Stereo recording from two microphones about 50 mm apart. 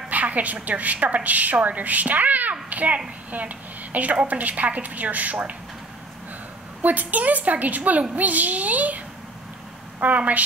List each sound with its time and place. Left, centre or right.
0.1 s a woman's voice: right
6.8 s a woman's voice: right
10.0 s a woman's voice: right